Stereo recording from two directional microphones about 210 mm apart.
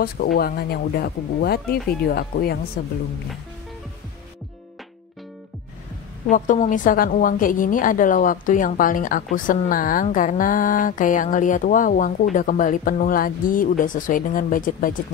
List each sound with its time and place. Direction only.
0.0 s speech: 45° left (ahead or behind)
6.3 s a woman's voice: 35° left (ahead or behind)